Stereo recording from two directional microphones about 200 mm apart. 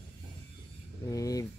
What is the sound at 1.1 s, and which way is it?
Speech, 15° left (ahead or behind).